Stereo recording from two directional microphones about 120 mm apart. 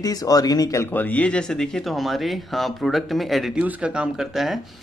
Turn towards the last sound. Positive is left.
turn(degrees=0)  # may be behind; listen again after turning